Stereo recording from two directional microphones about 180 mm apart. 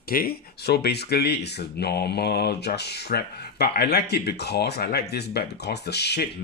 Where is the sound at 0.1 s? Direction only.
55° left (ahead or behind).